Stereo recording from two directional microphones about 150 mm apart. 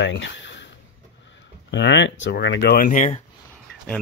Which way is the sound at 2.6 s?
75° left (ahead or behind).